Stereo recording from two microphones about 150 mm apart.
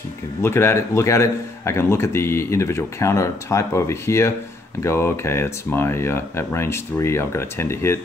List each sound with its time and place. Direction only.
0.4 s a man's voice: 15° left (ahead or behind)